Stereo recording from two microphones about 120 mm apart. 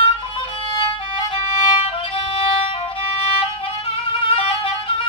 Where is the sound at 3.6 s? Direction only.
50° left (ahead or behind).